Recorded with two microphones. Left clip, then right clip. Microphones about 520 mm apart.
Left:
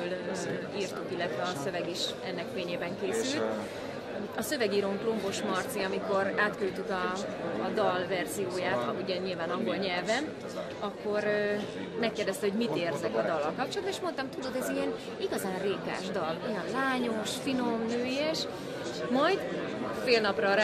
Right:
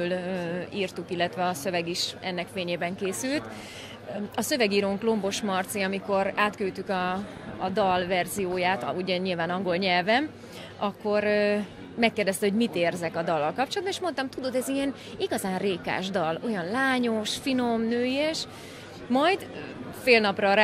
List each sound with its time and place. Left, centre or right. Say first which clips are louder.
0.7 s a woman's voice: right 7 dB; right
12.0 s speech: right 6 dB; right